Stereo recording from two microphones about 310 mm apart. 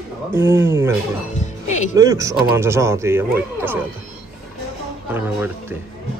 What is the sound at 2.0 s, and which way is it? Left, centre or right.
Speech, centre.